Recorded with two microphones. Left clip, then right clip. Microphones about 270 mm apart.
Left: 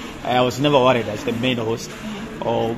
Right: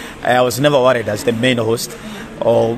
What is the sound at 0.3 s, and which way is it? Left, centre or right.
A woman's voice, right.